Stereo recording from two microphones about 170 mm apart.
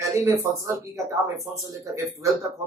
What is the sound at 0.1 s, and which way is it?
Speech, 15° right (ahead or behind).